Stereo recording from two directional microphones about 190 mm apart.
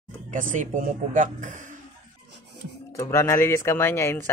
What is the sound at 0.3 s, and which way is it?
Speech, 45° right (ahead or behind).